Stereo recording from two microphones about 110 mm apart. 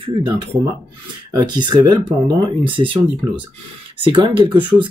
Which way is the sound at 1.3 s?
40° right (ahead or behind).